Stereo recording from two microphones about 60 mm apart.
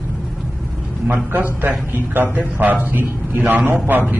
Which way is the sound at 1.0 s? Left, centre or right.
Right.